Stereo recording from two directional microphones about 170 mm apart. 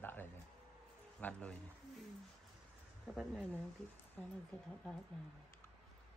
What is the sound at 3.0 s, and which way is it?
Speech, 5° right (ahead or behind).